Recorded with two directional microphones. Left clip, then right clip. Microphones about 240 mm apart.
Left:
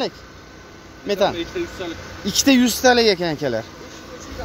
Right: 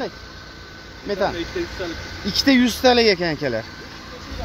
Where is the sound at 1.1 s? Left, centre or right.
Centre.